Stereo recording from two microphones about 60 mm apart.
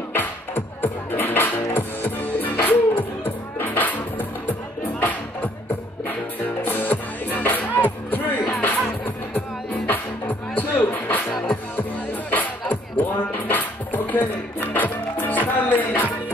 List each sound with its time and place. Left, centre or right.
0.1 s music: left
6.6 s music: left
9.8 s music: left